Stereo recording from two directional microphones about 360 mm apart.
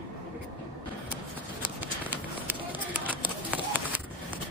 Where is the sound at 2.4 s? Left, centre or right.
Centre.